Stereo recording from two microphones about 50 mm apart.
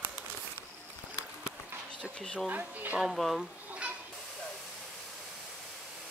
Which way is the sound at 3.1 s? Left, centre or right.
Centre.